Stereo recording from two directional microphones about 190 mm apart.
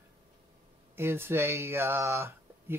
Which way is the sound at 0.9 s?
10° right (ahead or behind).